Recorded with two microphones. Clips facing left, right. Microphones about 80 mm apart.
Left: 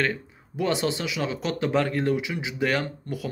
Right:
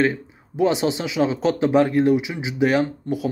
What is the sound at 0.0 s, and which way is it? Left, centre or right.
Speech, centre.